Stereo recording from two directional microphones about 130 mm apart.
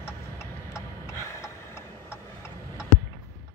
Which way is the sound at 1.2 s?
20° left (ahead or behind).